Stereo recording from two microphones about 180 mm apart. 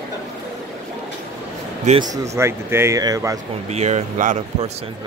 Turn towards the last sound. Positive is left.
turn(degrees=-40)  # may be behind; listen again after turning